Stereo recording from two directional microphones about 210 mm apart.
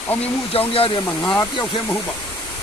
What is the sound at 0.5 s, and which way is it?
Speech, 25° left (ahead or behind).